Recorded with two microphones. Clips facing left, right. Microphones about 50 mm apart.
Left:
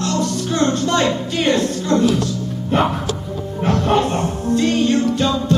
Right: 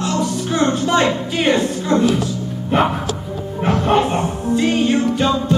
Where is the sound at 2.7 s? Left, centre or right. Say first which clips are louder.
Right 1 dB; centre.